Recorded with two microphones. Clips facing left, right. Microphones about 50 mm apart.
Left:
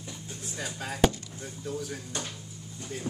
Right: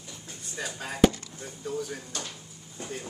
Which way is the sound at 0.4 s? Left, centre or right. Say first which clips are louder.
Right 1 dB; centre.